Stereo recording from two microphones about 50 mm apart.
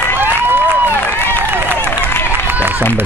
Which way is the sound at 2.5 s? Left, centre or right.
Right.